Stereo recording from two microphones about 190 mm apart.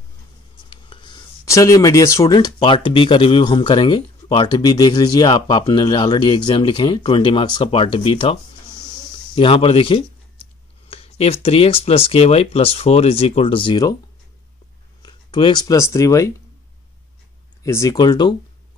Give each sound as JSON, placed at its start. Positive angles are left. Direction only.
{"t": 0.7, "sound": "speech", "side_deg": 25}
{"t": 15.0, "sound": "speech", "side_deg": 25}
{"t": 17.6, "sound": "speech", "side_deg": 15}